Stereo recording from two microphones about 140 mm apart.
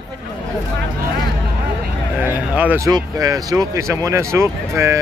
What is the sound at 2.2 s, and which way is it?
Speech, 10° right (ahead or behind).